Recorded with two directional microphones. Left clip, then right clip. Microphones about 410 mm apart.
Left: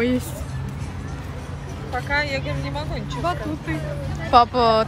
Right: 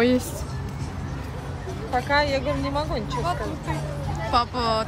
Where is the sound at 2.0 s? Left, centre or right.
Right.